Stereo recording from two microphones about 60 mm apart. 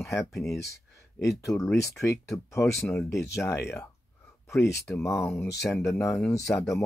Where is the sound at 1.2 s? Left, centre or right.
Left.